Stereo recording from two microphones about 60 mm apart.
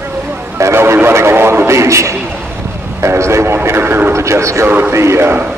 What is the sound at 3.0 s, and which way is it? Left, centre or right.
Vehicle, right.